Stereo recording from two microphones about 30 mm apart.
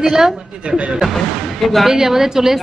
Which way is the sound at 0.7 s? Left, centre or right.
Right.